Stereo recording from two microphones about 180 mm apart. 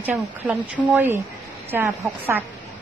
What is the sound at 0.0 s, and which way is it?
Speech, 10° right (ahead or behind).